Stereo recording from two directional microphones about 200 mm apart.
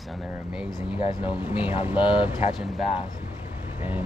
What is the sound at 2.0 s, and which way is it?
Speech, 25° left (ahead or behind).